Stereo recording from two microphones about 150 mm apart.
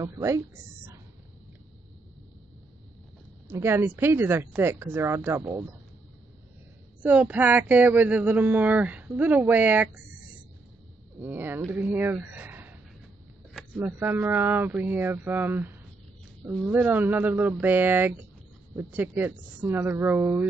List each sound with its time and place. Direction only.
0.0 s a woman's voice: 20° right (ahead or behind)
3.4 s speech: 15° right (ahead or behind)
7.0 s speech: 10° right (ahead or behind)
11.1 s speech: 15° right (ahead or behind)
13.7 s speech: 15° right (ahead or behind)